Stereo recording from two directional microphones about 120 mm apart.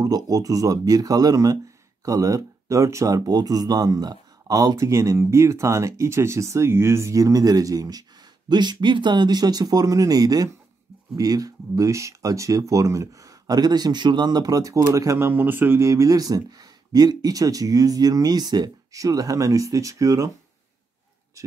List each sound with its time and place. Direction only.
0.0 s speech: 30° right (ahead or behind)